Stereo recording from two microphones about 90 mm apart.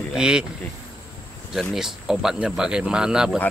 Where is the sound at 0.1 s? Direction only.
10° right (ahead or behind).